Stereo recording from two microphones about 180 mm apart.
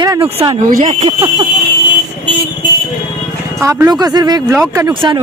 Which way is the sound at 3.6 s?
15° right (ahead or behind).